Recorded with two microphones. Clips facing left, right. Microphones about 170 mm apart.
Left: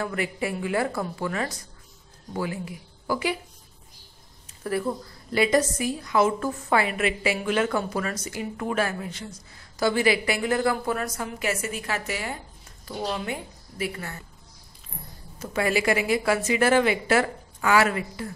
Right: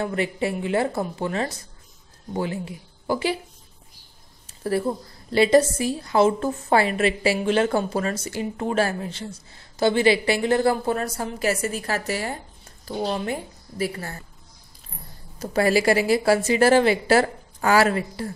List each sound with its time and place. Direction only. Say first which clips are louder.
0.0 s a woman's voice: right 4 dB; 25° right (ahead or behind)
4.6 s a woman's voice: right 3 dB; 30° right (ahead or behind)
15.3 s a woman's voice: right 5 dB; 35° right (ahead or behind)